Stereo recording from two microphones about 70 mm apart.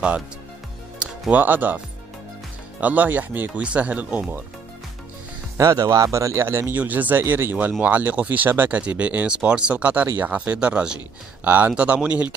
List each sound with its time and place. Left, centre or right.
1.3 s speech: right
2.8 s speech: right
5.6 s speech: right
6.8 s speech: right
7.8 s speech: right